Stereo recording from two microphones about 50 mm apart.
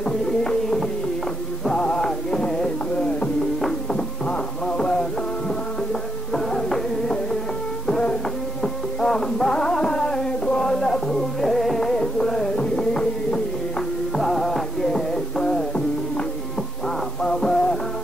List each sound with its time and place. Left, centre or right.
0.0 s a sound: centre
1.7 s music: centre
6.3 s music: centre
14.1 s music: centre
17.2 s music: centre